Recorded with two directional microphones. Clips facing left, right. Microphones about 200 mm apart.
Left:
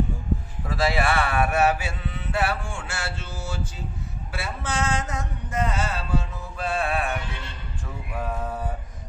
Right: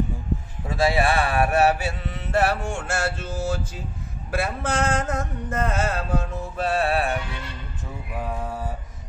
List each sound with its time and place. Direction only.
0.7 s speech: 30° right (ahead or behind); by 3.5 s 50° right (ahead or behind)
4.3 s a sound: 55° right (ahead or behind); by 7.2 s 35° right (ahead or behind)
8.3 s mantra: 10° right (ahead or behind)